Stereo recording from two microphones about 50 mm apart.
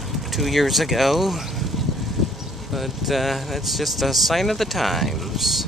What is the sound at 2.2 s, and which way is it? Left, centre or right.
Vehicle, centre.